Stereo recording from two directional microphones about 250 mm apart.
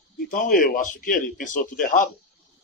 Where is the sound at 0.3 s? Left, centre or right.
Left.